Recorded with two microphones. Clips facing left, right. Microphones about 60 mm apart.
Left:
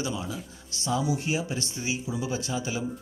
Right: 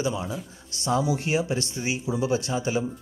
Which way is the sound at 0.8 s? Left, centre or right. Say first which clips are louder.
Right 3 dB; right.